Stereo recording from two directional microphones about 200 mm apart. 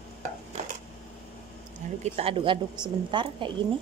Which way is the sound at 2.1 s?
30° right (ahead or behind).